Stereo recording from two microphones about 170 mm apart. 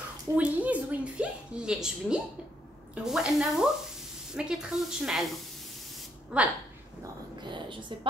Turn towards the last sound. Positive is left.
turn(degrees=-30)  # may be behind; listen again after turning